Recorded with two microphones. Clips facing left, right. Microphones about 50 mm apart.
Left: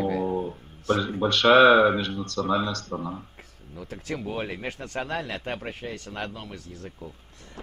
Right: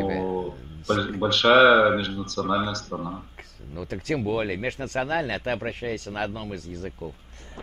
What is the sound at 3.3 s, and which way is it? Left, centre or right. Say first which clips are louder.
Speech: right 5 dB; right.